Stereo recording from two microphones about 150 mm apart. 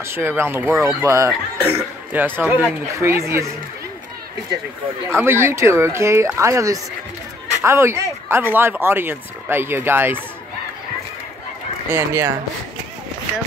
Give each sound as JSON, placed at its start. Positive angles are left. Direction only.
{"t": 0.0, "sound": "speech", "side_deg": -15}
{"t": 5.1, "sound": "speech", "side_deg": -15}
{"t": 11.9, "sound": "speech", "side_deg": -15}